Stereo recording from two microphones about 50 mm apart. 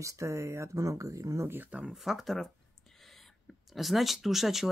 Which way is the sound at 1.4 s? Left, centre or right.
Right.